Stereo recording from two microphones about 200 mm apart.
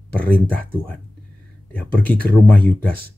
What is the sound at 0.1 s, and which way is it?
Speech, 5° left (ahead or behind).